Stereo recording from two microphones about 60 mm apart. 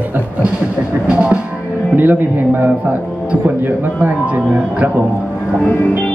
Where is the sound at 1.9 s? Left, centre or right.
Right.